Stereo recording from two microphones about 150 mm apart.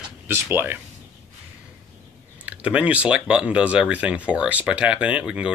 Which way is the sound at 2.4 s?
10° right (ahead or behind).